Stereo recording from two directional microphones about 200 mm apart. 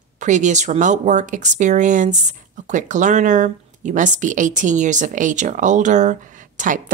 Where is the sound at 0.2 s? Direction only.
35° right (ahead or behind).